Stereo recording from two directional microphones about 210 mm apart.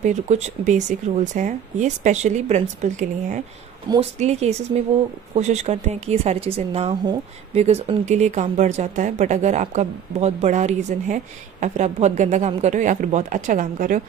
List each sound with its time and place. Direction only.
0.0 s a woman's voice: 35° right (ahead or behind)